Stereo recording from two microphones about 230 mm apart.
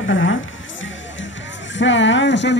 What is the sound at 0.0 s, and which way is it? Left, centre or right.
Music, left.